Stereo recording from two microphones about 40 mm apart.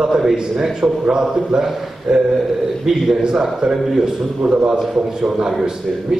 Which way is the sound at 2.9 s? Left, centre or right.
Centre.